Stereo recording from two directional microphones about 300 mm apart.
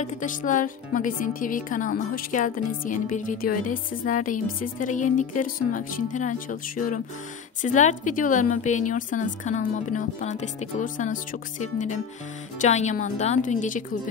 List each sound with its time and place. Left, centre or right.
0.0 s speech: left